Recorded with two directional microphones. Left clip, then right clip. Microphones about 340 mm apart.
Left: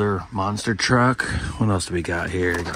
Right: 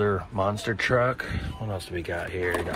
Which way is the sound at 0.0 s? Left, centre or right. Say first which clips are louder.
Left 2 dB; centre.